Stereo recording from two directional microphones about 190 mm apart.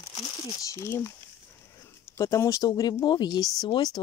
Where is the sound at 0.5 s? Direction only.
15° left (ahead or behind).